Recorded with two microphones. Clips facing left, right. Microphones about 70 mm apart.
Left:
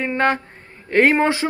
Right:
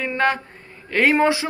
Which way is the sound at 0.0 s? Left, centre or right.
Left.